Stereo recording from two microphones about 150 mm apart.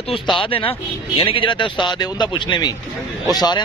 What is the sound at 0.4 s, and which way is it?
Speech, 35° left (ahead or behind).